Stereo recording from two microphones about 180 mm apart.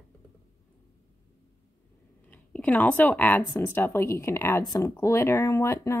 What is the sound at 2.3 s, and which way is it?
Speech, 10° left (ahead or behind).